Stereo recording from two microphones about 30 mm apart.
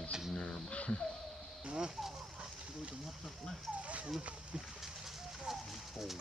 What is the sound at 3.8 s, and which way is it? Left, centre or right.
Dog, right.